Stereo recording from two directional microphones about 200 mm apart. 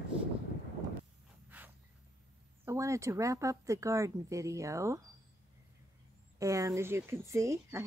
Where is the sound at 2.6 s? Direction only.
15° right (ahead or behind).